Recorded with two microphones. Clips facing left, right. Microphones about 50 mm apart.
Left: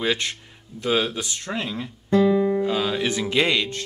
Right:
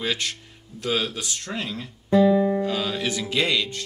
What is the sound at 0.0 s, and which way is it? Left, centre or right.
Speech, left.